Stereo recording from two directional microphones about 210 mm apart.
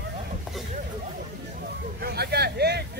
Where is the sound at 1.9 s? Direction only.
50° right (ahead or behind).